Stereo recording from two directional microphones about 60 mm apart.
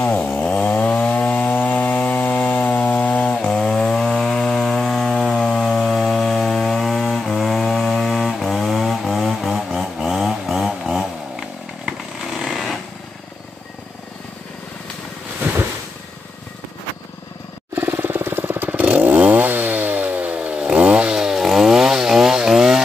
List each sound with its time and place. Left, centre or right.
0.7 s chainsaw: left; by 12.8 s centre
17.7 s motorcycle: right; by 22.8 s centre